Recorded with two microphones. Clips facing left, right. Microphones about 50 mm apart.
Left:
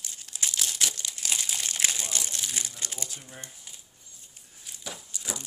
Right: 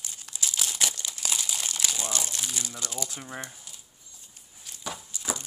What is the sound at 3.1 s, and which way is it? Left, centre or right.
Speech, right.